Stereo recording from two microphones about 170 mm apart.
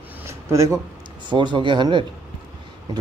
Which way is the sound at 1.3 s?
30° right (ahead or behind).